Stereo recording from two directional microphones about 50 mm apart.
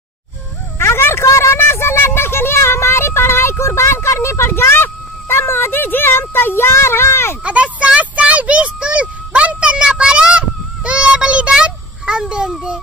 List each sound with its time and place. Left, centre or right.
0.7 s a sound: left
3.9 s speech: left
7.4 s a child's voice: right